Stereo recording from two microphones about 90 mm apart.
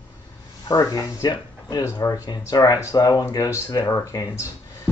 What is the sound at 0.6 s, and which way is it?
Speech, 45° left (ahead or behind).